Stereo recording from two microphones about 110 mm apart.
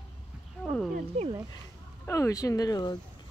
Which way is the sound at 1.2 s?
65° right (ahead or behind).